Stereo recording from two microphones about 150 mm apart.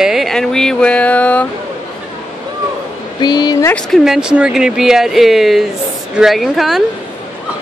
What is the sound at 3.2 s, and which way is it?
Speech, 30° left (ahead or behind).